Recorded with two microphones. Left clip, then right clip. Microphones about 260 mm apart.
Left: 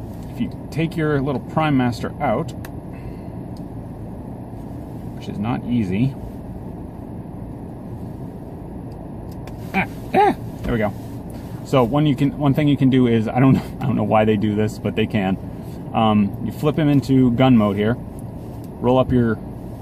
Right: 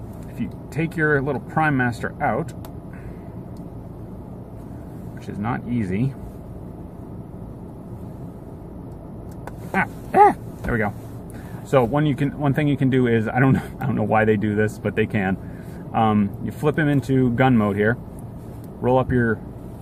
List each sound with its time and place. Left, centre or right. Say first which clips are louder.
0.4 s speech: left 3 dB; right
5.4 s speech: left 2 dB; right
9.8 s a sound: right 2 dB; right
11.8 s speech: left 3 dB; right